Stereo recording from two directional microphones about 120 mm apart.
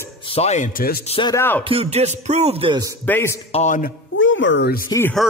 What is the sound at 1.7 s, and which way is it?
Music, 60° right (ahead or behind).